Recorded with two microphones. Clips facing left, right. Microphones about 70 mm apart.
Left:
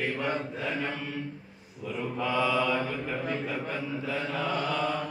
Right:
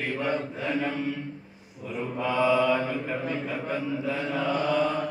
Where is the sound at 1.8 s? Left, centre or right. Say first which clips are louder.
Right 1 dB; right.